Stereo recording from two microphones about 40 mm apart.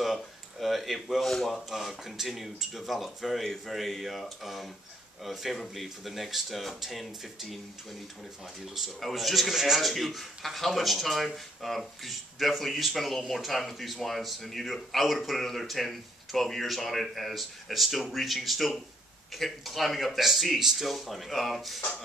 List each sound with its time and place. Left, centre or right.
0.0 s speech: centre
9.0 s speech: centre